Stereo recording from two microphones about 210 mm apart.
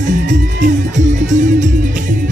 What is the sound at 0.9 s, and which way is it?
Music, 35° right (ahead or behind).